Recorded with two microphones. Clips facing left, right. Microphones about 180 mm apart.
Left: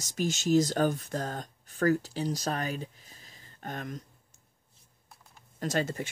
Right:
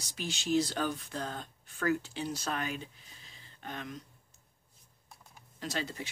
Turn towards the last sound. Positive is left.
turn(degrees=50)  # may be behind; listen again after turning